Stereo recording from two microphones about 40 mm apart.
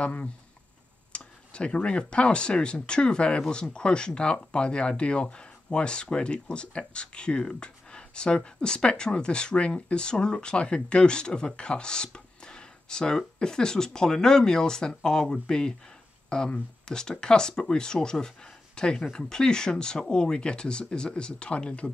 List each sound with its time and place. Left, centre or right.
0.0 s speech: left